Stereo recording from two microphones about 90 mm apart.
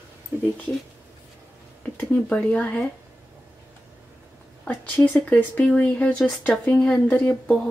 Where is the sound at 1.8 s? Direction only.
15° left (ahead or behind).